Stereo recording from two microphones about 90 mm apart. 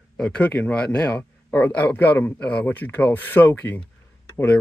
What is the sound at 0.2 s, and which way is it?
Speech, 15° left (ahead or behind).